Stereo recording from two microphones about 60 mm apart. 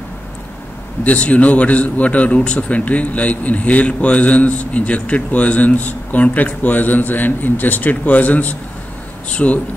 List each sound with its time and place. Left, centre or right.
1.0 s a man's voice: left